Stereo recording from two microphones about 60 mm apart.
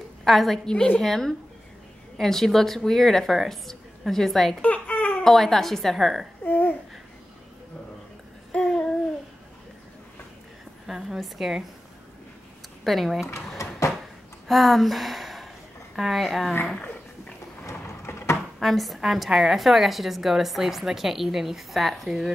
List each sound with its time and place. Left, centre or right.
0.2 s a woman's voice: centre
0.7 s a woman's voice: centre
4.6 s baby cry: left
5.2 s a woman's voice: centre
6.4 s babbling: left
8.5 s babbling: left
10.9 s a woman's voice: centre
12.8 s a woman's voice: centre
13.6 s a sound: left
14.5 s a woman's voice: centre
17.6 s a sound: left
18.6 s a woman's voice: centre